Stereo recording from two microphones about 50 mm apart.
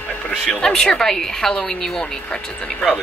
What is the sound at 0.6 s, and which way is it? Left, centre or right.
A woman's voice, centre.